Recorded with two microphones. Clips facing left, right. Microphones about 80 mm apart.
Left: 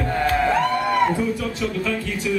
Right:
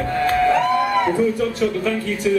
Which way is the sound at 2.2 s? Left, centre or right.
Right.